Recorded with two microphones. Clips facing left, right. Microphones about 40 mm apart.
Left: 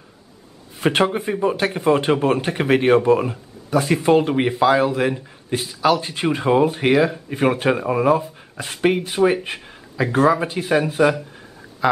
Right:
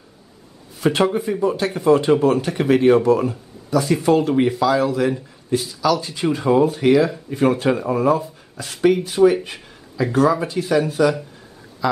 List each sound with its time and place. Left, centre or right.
0.7 s speech: left